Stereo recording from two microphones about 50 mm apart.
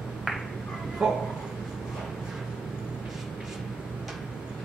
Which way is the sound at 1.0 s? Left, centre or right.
Centre.